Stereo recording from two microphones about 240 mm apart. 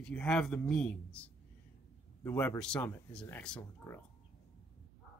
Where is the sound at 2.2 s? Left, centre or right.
Centre.